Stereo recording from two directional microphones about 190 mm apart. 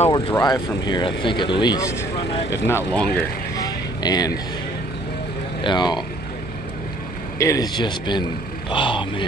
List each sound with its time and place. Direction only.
0.0 s speech: 25° left (ahead or behind); by 3.3 s 5° left (ahead or behind)
3.5 s vehicle: 20° left (ahead or behind)
5.6 s speech: 25° left (ahead or behind)
7.3 s speech: 15° left (ahead or behind)